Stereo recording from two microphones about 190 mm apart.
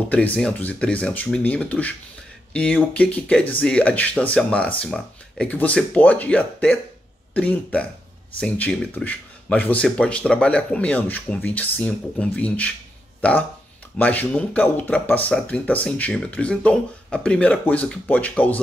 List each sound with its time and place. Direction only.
0.1 s speech: 5° left (ahead or behind)
13.9 s speech: 10° left (ahead or behind)